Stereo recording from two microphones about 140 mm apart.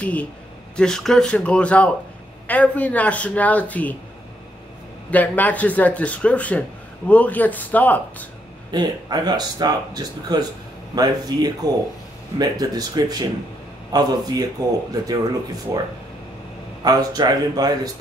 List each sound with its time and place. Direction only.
0.0 s speech: 10° left (ahead or behind)
5.1 s speech: 10° left (ahead or behind)
8.7 s speech: 30° right (ahead or behind)